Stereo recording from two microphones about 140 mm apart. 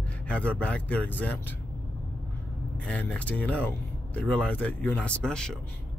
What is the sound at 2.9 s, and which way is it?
Speech, 10° left (ahead or behind).